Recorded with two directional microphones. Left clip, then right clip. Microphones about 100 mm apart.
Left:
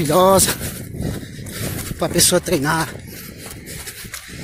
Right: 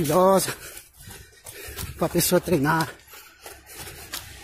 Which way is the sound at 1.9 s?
10° left (ahead or behind).